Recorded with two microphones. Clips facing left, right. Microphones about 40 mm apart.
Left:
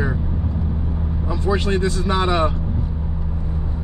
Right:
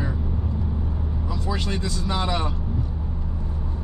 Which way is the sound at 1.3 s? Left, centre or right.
Left.